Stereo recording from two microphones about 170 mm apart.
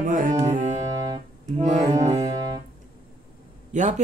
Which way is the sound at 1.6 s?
45° right (ahead or behind).